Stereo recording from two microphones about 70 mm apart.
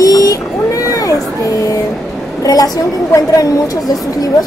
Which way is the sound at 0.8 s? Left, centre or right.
Left.